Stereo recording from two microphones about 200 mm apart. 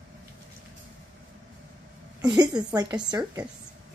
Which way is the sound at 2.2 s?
20° right (ahead or behind).